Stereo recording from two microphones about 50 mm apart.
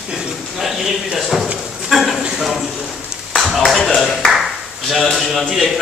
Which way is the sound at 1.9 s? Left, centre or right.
Centre.